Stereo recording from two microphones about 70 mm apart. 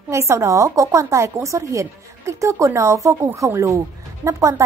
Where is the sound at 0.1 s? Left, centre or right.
Right.